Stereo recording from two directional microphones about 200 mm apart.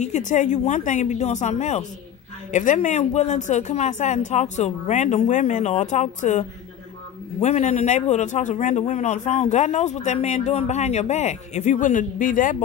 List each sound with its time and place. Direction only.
0.0 s a man's voice: 35° left (ahead or behind)
7.4 s a man's voice: 35° left (ahead or behind)